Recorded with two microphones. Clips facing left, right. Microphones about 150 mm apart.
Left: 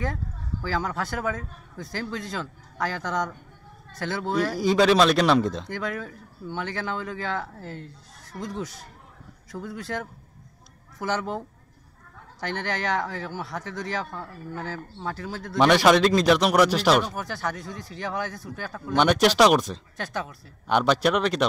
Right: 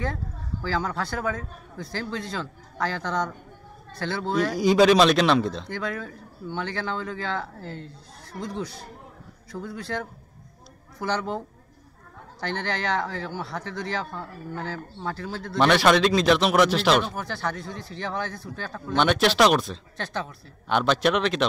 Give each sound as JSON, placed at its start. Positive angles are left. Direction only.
{"t": 0.7, "sound": "speech", "side_deg": 15}
{"t": 9.5, "sound": "speech", "side_deg": 20}
{"t": 11.0, "sound": "speech", "side_deg": 15}